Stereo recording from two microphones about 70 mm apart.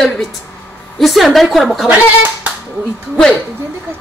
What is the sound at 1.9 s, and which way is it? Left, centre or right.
Speech, right.